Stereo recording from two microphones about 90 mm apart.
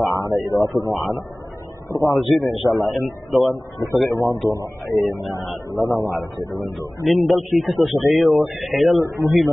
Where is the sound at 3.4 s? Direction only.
40° left (ahead or behind).